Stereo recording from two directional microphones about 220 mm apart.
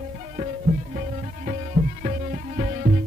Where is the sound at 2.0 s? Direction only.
35° right (ahead or behind).